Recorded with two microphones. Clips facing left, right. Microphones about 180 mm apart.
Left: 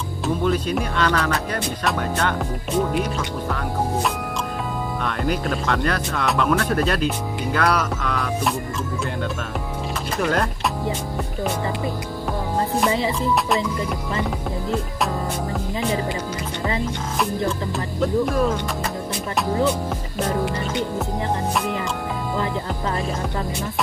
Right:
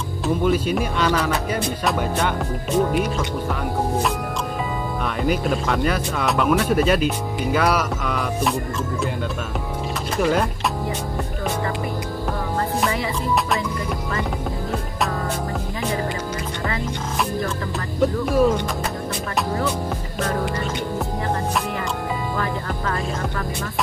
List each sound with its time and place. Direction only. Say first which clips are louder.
0.5 s speech: right 2 dB; 5° right (ahead or behind)
5.0 s speech: right 2 dB; 5° right (ahead or behind)
10.1 s speech: right 2 dB; 5° right (ahead or behind)
12.9 s music: left 3 dB; 20° left (ahead or behind)